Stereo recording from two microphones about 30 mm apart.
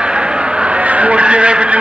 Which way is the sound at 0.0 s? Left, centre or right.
Right.